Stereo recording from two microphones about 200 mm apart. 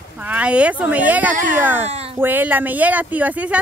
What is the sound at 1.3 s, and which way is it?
Speech, 40° right (ahead or behind).